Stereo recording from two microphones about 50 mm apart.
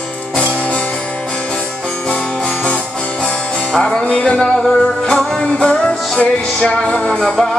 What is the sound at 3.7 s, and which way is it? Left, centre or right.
Music, centre.